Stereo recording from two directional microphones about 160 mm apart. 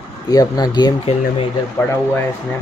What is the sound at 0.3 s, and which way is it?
Speech, 25° left (ahead or behind).